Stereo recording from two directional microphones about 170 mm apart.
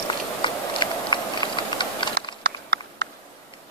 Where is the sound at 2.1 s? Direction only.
90° right.